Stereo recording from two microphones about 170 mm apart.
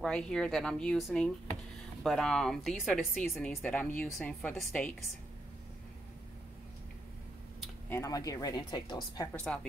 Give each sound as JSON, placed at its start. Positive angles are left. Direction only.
{"t": 0.0, "sound": "speech", "side_deg": 5}
{"t": 7.9, "sound": "speech", "side_deg": 20}
{"t": 9.3, "sound": "speech", "side_deg": 5}